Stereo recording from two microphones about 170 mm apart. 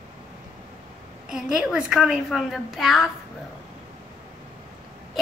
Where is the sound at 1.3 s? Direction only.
5° right (ahead or behind).